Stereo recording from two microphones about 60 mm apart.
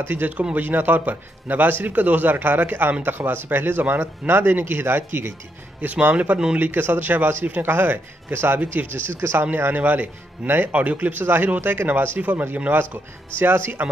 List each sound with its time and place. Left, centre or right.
0.0 s a man's voice: right
6.7 s a man's voice: right
12.2 s a man's voice: right